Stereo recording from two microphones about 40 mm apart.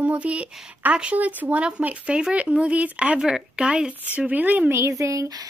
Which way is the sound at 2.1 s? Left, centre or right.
Right.